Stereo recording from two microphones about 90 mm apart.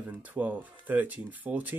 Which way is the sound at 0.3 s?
20° right (ahead or behind).